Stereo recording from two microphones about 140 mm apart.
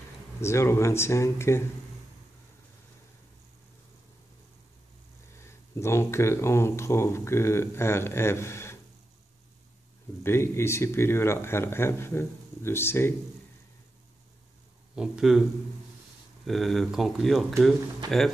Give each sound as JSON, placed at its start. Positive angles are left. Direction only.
{"t": 0.4, "sound": "speech", "side_deg": 20}
{"t": 5.8, "sound": "speech", "side_deg": 20}
{"t": 10.2, "sound": "speech", "side_deg": 20}
{"t": 15.0, "sound": "speech", "side_deg": -5}
{"t": 16.4, "sound": "speech", "side_deg": 0}